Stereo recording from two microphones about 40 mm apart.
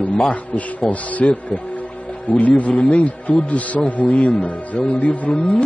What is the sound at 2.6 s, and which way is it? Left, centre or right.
Speech, left.